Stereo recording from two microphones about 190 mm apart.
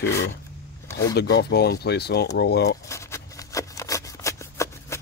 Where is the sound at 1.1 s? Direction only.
60° left (ahead or behind).